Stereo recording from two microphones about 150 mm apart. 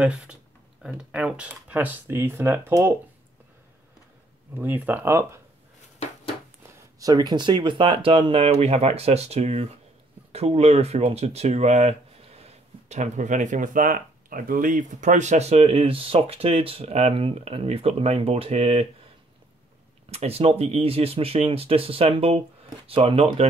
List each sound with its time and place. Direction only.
0.0 s speech: 10° right (ahead or behind)
4.6 s speech: 10° right (ahead or behind)
6.7 s speech: 25° right (ahead or behind); by 18.9 s 45° right (ahead or behind)
20.1 s speech: 40° right (ahead or behind)